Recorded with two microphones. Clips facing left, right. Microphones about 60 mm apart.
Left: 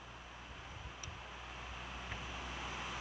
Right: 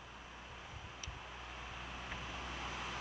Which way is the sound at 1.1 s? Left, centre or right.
Centre.